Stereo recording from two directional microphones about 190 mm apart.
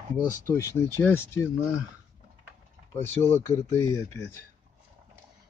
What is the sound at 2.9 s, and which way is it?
Speech, 10° left (ahead or behind).